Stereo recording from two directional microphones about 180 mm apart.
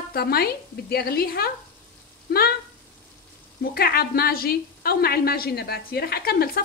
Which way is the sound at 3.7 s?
55° left (ahead or behind).